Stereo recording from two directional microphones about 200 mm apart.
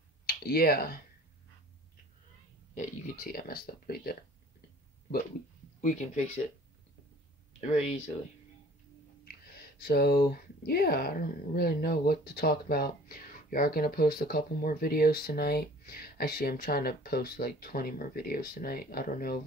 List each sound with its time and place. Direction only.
0.3 s speech: 50° left (ahead or behind)
2.7 s speech: 45° left (ahead or behind)
5.8 s speech: 40° left (ahead or behind)
7.6 s speech: 30° left (ahead or behind)
9.2 s speech: 50° left (ahead or behind)